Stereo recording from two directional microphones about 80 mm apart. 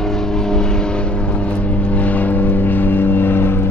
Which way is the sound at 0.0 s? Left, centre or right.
Centre.